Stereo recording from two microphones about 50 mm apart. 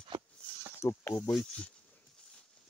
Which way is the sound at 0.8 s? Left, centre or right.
Left.